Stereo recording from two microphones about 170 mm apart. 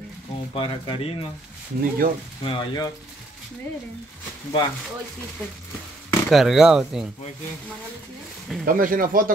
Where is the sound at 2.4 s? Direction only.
30° left (ahead or behind).